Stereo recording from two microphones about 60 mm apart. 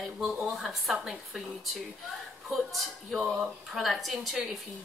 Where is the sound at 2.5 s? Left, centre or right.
Centre.